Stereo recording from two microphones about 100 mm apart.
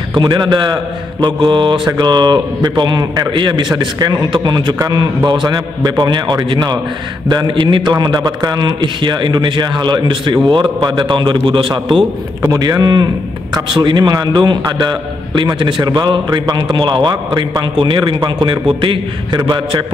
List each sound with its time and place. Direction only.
0.1 s a man's voice: 45° right (ahead or behind)
12.4 s speech: 35° right (ahead or behind)
13.7 s a man's voice: 55° right (ahead or behind)